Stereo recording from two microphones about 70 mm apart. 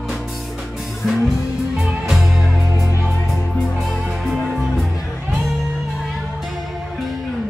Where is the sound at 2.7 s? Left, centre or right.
Right.